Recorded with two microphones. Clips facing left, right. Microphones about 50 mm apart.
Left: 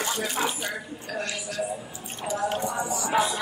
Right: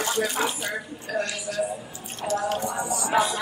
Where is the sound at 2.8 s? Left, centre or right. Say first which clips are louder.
Right 1 dB; left.